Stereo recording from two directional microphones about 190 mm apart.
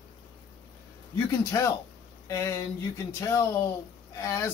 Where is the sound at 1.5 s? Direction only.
20° left (ahead or behind).